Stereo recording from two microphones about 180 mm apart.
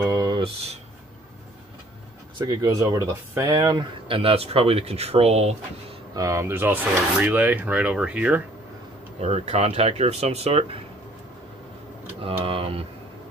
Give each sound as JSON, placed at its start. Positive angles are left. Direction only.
{"t": 0.0, "sound": "a sound", "side_deg": -20}
{"t": 2.3, "sound": "speech", "side_deg": -20}
{"t": 6.1, "sound": "speech", "side_deg": -20}
{"t": 9.2, "sound": "speech", "side_deg": -40}
{"t": 12.4, "sound": "speech", "side_deg": -30}